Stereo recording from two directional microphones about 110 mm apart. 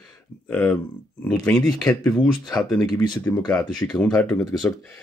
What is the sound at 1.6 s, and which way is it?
Speech, 35° left (ahead or behind).